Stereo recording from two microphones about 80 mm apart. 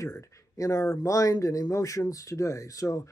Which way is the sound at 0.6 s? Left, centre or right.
Left.